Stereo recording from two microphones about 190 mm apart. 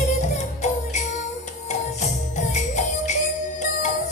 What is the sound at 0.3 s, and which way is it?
Music, 35° left (ahead or behind).